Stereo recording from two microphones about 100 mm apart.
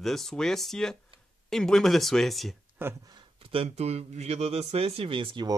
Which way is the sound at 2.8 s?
20° right (ahead or behind).